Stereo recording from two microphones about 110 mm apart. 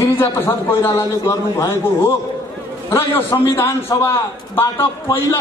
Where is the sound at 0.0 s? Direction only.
25° left (ahead or behind).